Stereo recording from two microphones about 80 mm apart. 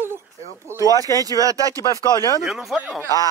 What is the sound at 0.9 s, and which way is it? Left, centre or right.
Speech, left.